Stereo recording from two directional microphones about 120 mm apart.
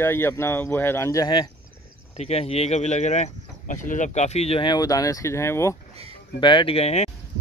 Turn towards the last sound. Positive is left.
turn(degrees=60)  # may be behind; listen again after turning